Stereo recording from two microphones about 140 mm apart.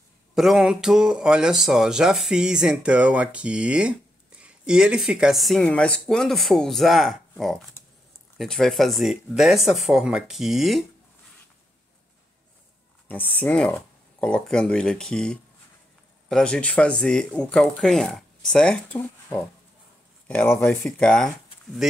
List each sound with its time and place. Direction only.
0.3 s speech: centre (ahead or behind)
7.8 s a sound: 15° left (ahead or behind)
8.4 s speech: centre (ahead or behind)
13.1 s speech: 10° left (ahead or behind)
18.9 s speech: 15° left (ahead or behind)
20.8 s speech: 5° left (ahead or behind)